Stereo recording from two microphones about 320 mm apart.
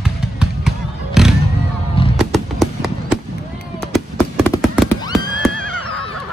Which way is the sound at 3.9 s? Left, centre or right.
Centre.